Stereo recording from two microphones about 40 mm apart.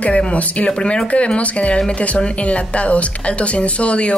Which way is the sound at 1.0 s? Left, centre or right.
Left.